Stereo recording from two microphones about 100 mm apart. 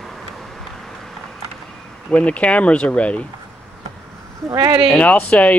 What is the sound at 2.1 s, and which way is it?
Speech, 15° left (ahead or behind).